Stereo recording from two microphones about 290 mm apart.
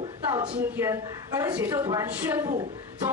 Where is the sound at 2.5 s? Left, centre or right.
Right.